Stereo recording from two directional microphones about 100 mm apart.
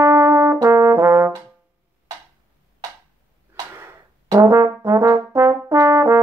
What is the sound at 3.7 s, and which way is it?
Brass instrument, 25° right (ahead or behind).